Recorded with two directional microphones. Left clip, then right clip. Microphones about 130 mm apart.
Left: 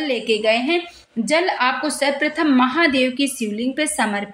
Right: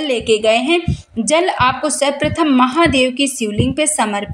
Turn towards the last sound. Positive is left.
turn(degrees=-20)  # may be behind; listen again after turning